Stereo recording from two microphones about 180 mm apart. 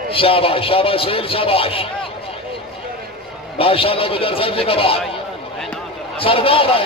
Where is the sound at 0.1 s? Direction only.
30° left (ahead or behind).